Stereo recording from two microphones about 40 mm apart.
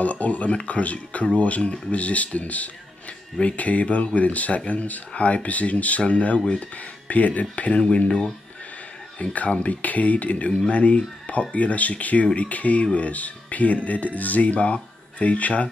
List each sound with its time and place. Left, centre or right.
0.0 s speech: left
9.2 s speech: left